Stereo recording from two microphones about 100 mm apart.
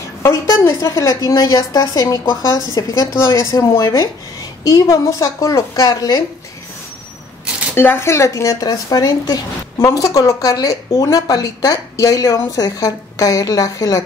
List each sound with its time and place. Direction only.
0.2 s speech: 30° left (ahead or behind)
7.7 s speech: 25° left (ahead or behind)